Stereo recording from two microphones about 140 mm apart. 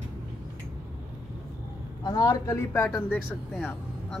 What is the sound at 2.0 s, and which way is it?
Speech, 30° left (ahead or behind).